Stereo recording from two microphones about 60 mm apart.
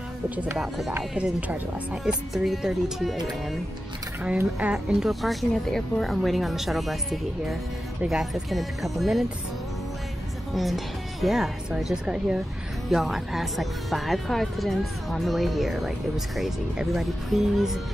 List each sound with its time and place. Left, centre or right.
0.6 s speech: centre
1.1 s speech: right
2.3 s a woman's voice: centre
4.6 s a woman's voice: centre
10.5 s speech: centre
11.7 s a woman's voice: centre